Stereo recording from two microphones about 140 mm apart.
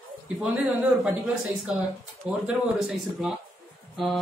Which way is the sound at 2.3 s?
5° right (ahead or behind).